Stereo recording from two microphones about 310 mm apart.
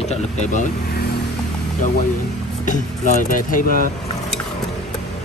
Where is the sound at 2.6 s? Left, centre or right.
Left.